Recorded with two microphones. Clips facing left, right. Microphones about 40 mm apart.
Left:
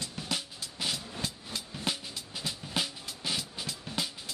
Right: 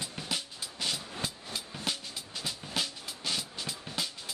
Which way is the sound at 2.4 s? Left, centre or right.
Centre.